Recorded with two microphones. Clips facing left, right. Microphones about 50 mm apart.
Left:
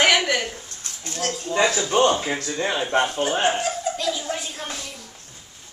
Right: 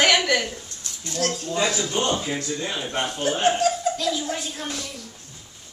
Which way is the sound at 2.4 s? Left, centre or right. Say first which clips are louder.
Left 3 dB; left.